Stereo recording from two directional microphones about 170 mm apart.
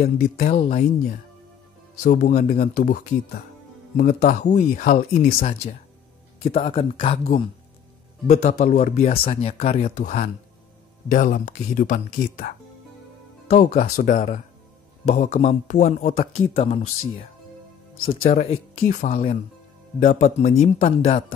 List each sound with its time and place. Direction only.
0.0 s speech: 50° left (ahead or behind)
0.6 s speech: 35° left (ahead or behind)
2.0 s speech: 55° left (ahead or behind)
6.4 s speech: 35° left (ahead or behind)
18.0 s speech: 50° left (ahead or behind)